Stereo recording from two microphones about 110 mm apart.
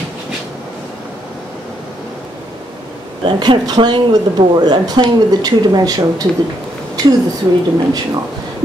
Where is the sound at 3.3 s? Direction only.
40° right (ahead or behind).